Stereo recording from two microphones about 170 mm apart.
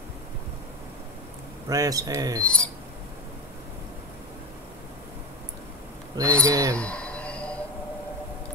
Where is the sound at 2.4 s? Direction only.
5° left (ahead or behind).